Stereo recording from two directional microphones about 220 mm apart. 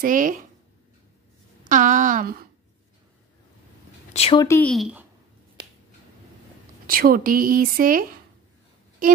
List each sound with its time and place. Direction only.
0.0 s speech: 35° right (ahead or behind)
1.7 s speech: 35° right (ahead or behind)
4.1 s speech: 25° left (ahead or behind)
4.5 s speech: 5° left (ahead or behind)
6.9 s speech: 40° right (ahead or behind)